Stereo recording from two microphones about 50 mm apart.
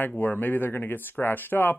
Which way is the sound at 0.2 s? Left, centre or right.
Left.